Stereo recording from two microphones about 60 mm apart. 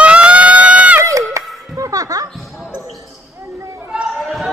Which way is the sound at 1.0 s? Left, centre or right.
Right.